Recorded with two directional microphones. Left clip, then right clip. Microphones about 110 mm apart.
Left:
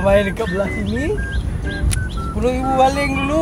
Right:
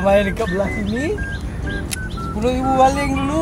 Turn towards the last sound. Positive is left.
turn(degrees=35)  # may be behind; listen again after turning